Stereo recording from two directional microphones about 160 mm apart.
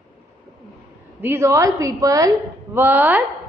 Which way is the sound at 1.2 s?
15° right (ahead or behind).